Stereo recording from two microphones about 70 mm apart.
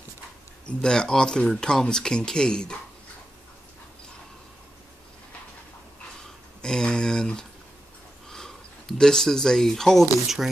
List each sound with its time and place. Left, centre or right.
0.7 s speech: centre
6.6 s speech: centre